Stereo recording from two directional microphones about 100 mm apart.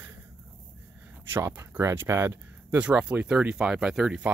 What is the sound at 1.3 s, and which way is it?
Speech, 20° right (ahead or behind).